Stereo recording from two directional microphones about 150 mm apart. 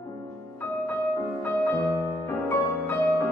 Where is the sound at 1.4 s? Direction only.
15° left (ahead or behind).